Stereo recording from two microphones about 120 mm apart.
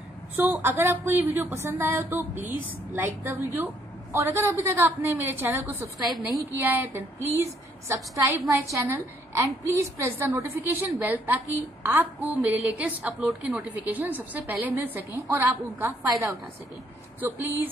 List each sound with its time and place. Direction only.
0.4 s a woman's voice: 20° right (ahead or behind)